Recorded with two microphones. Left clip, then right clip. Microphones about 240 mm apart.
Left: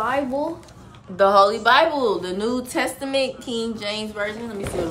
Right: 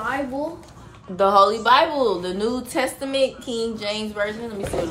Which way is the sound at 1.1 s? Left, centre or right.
Centre.